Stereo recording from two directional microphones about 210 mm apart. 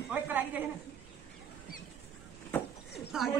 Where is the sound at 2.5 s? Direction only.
10° left (ahead or behind).